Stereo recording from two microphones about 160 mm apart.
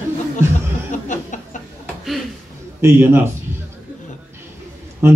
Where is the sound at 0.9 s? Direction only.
50° left (ahead or behind).